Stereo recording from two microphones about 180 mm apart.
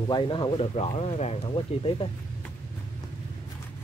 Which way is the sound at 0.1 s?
25° left (ahead or behind).